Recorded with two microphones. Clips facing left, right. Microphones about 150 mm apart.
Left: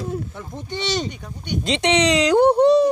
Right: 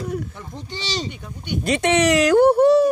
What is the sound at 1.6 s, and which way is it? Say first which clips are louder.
Speech: right 1 dB; 20° left (ahead or behind).